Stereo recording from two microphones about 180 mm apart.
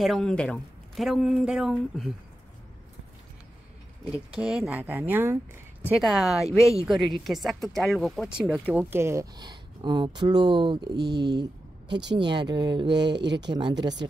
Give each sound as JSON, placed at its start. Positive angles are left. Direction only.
{"t": 0.0, "sound": "speech", "side_deg": 0}
{"t": 4.4, "sound": "speech", "side_deg": -5}
{"t": 5.9, "sound": "speech", "side_deg": 0}
{"t": 6.4, "sound": "speech", "side_deg": 15}
{"t": 6.9, "sound": "speech", "side_deg": 0}
{"t": 11.9, "sound": "speech", "side_deg": -75}
{"t": 12.2, "sound": "speech", "side_deg": -25}
{"t": 12.8, "sound": "speech", "side_deg": -70}
{"t": 13.5, "sound": "speech", "side_deg": -25}